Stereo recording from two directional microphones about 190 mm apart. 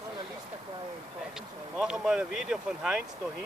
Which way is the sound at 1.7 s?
5° right (ahead or behind).